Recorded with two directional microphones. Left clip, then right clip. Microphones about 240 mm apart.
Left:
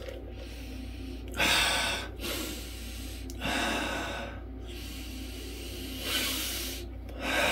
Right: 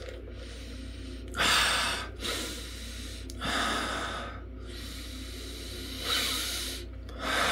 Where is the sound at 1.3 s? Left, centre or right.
Centre.